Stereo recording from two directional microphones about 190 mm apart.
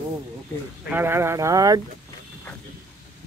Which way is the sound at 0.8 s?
10° right (ahead or behind).